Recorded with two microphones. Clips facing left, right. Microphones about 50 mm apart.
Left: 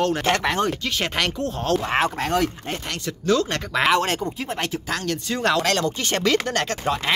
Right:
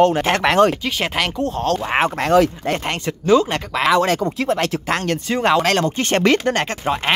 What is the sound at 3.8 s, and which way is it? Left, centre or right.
Speech, centre.